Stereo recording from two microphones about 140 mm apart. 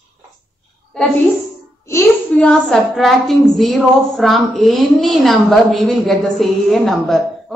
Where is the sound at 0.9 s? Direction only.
5° left (ahead or behind).